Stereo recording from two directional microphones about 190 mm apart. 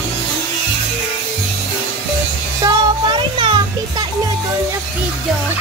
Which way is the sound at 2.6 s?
25° right (ahead or behind).